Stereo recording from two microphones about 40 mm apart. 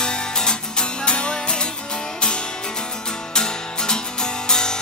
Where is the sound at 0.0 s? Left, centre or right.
Left.